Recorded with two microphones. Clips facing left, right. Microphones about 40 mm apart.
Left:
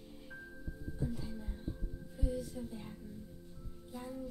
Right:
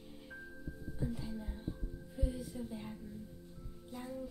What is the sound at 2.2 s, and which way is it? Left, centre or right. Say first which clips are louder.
Music: left 1 dB; centre.